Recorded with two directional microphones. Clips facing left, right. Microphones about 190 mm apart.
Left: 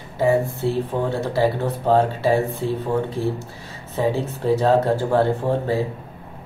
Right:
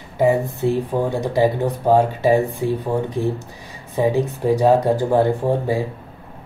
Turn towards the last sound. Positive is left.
turn(degrees=-15)  # may be behind; listen again after turning